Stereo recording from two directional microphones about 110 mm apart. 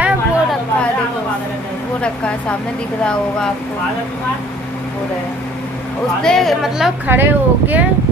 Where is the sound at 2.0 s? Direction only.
10° left (ahead or behind).